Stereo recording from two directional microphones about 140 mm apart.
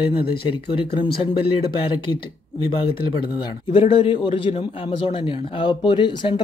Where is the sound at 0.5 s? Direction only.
35° left (ahead or behind).